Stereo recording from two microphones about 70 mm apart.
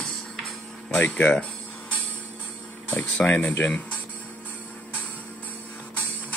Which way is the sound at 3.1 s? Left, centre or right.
Centre.